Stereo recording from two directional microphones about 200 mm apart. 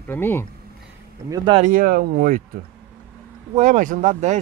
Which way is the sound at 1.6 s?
45° right (ahead or behind).